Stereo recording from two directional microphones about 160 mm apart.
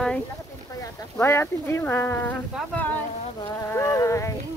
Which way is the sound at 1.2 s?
15° left (ahead or behind).